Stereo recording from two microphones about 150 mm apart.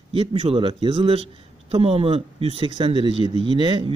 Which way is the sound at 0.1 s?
40° right (ahead or behind).